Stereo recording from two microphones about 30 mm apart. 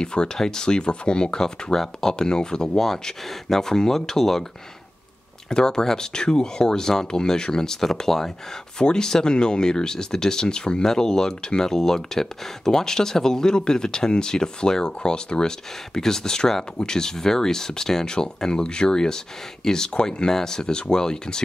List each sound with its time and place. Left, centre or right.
0.0 s speech: left
1.4 s speech: centre
3.3 s speech: centre
5.5 s speech: left
16.0 s speech: centre